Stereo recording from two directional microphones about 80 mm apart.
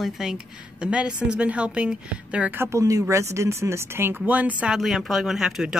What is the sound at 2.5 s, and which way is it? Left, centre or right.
A woman's voice, right.